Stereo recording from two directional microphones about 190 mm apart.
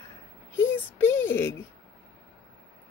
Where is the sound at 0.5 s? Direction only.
10° left (ahead or behind).